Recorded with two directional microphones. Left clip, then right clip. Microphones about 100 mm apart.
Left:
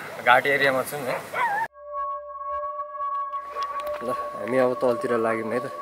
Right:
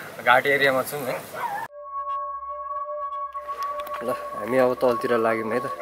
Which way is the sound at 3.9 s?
5° left (ahead or behind).